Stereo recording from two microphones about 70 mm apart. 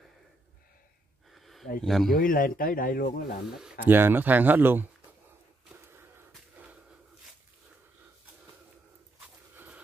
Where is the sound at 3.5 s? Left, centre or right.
Centre.